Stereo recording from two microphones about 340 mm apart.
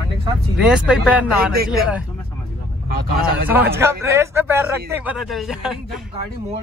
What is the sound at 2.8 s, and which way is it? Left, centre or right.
Speech, right.